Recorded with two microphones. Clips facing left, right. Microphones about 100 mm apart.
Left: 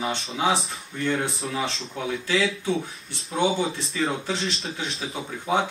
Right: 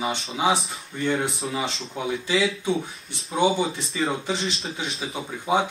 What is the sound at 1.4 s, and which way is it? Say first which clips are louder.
A man's voice: even; centre (ahead or behind).